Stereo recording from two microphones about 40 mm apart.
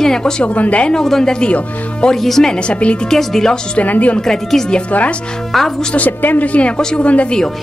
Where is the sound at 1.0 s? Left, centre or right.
Centre.